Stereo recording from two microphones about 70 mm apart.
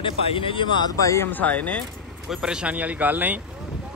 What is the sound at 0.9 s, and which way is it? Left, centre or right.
Speech, left.